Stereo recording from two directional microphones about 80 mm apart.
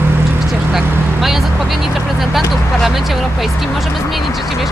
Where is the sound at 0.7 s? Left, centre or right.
Centre.